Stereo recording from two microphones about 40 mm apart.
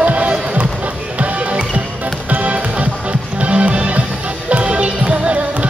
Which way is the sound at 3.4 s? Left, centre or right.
Right.